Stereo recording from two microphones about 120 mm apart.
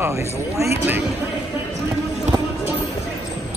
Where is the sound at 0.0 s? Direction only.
25° right (ahead or behind).